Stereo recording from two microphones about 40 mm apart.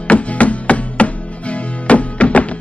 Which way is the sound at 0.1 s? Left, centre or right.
Left.